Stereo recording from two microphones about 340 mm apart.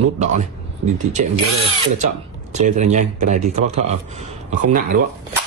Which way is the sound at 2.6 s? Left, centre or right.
Right.